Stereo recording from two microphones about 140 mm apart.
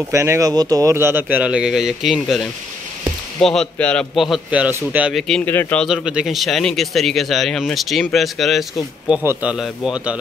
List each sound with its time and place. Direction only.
0.1 s speech: 20° right (ahead or behind)
5.4 s speech: 15° left (ahead or behind)
5.9 s speech: 5° right (ahead or behind)
9.2 s speech: 15° right (ahead or behind)